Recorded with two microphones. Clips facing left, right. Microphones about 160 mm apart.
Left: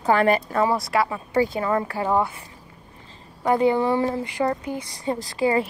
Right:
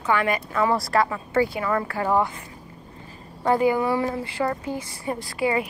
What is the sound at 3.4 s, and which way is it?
Speech, 25° left (ahead or behind).